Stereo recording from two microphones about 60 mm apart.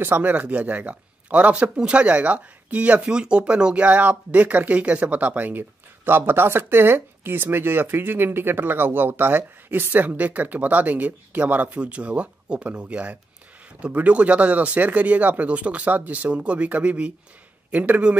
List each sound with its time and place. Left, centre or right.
0.0 s a man's voice: right